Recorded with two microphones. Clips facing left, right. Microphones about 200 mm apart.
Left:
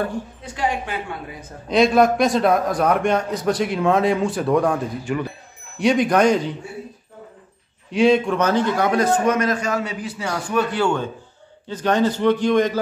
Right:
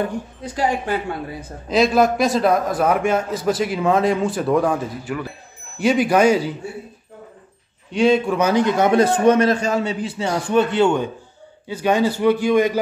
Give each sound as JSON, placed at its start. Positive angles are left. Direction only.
{"t": 0.4, "sound": "a woman's voice", "side_deg": -40}
{"t": 1.7, "sound": "a man's voice", "side_deg": 0}
{"t": 7.9, "sound": "a man's voice", "side_deg": 0}
{"t": 8.4, "sound": "a man's voice", "side_deg": -15}
{"t": 11.6, "sound": "a man's voice", "side_deg": -10}